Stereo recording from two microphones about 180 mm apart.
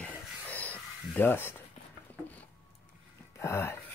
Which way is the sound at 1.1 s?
10° left (ahead or behind).